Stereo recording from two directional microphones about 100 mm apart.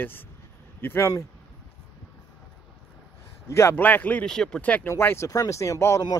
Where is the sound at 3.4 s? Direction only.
30° left (ahead or behind).